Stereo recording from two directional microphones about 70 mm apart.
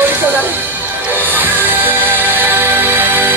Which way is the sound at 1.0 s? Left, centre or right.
Right.